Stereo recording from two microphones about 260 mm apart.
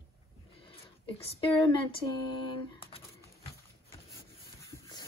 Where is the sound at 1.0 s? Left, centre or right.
Left.